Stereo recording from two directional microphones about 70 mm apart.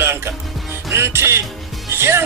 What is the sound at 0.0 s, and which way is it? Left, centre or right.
Music, right.